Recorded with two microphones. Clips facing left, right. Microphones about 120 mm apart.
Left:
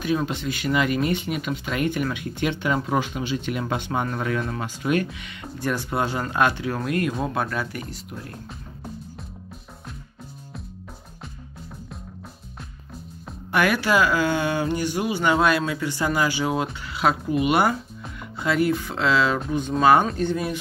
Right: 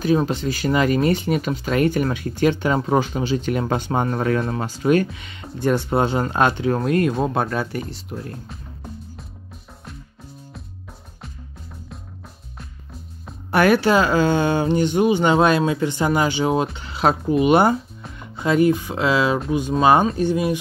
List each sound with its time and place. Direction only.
0.0 s speech: 35° right (ahead or behind)
13.5 s speech: 35° right (ahead or behind); by 20.5 s 15° right (ahead or behind)